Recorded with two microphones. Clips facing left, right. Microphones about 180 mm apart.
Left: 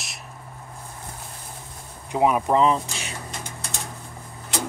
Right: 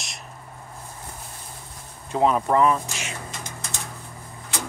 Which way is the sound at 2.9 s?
35° left (ahead or behind).